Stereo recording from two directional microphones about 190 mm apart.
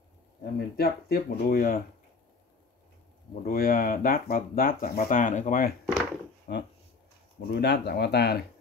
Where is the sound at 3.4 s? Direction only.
50° left (ahead or behind).